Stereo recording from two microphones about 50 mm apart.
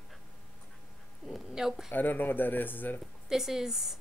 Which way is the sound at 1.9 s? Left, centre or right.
Left.